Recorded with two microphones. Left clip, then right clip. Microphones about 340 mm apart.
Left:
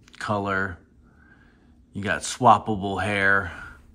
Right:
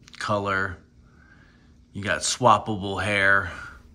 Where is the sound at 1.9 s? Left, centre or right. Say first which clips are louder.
Right 1 dB; centre.